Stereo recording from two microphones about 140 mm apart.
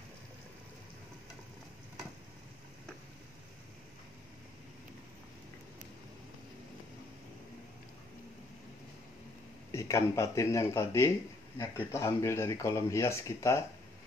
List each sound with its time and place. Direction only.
9.7 s speech: 20° left (ahead or behind)